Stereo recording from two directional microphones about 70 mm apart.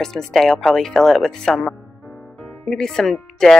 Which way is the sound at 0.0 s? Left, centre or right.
Centre.